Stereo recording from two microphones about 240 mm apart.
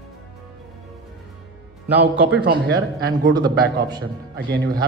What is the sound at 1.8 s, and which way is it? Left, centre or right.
Speech, centre.